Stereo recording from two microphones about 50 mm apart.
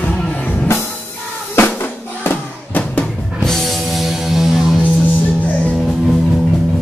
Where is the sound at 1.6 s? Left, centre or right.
Left.